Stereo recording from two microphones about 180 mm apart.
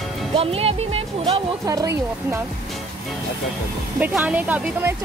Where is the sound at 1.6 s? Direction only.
20° right (ahead or behind).